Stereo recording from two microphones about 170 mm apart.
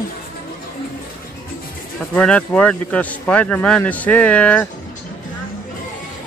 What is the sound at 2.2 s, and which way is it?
Speech, 5° left (ahead or behind).